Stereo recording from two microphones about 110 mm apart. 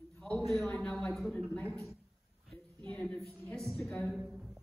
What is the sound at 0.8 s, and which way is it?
Speech, 10° left (ahead or behind).